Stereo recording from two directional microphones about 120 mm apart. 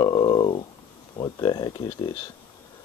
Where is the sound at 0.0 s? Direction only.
40° left (ahead or behind).